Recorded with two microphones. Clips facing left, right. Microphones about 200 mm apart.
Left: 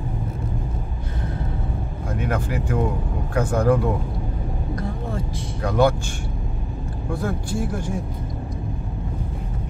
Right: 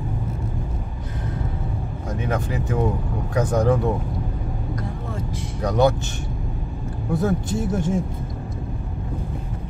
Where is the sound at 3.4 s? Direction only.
20° right (ahead or behind).